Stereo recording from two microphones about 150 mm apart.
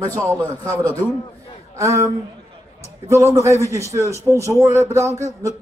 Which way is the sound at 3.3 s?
20° right (ahead or behind).